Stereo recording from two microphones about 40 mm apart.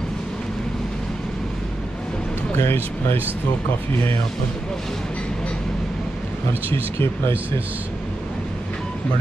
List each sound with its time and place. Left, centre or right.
2.5 s speech: left